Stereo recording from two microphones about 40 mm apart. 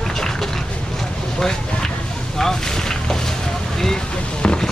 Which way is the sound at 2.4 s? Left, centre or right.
Centre.